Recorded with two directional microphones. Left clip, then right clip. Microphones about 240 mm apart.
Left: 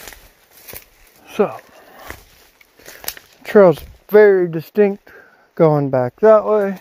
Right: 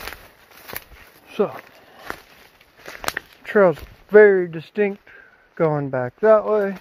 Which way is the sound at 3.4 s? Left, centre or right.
Left.